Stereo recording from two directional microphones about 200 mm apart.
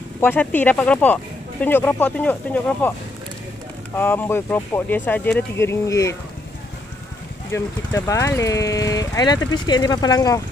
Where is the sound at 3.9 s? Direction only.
10° left (ahead or behind).